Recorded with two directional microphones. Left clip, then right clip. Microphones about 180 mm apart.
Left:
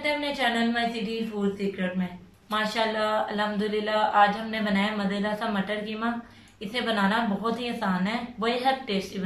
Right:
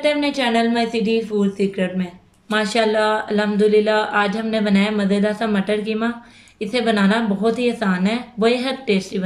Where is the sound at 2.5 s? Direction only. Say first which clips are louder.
Right 8 dB; 65° right (ahead or behind).